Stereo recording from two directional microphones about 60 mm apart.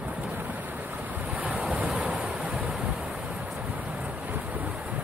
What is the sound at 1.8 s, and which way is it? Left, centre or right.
Waves, centre.